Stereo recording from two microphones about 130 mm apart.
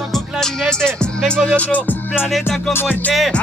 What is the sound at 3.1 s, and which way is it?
Music, centre (ahead or behind).